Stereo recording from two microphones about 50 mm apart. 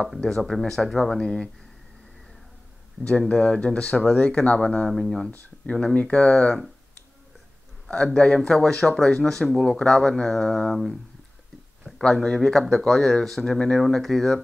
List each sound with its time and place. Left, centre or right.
0.0 s speech: centre
3.0 s speech: left
5.6 s speech: left
7.9 s speech: centre
12.1 s speech: centre